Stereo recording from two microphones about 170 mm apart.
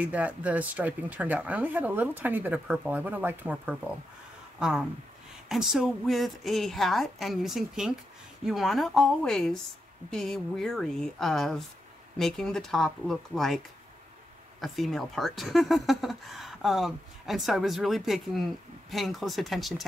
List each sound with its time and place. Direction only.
0.0 s speech: 10° right (ahead or behind)